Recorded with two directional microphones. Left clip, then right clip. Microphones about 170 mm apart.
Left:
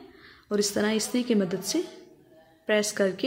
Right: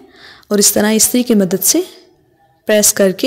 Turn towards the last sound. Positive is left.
turn(degrees=-50)  # may be behind; listen again after turning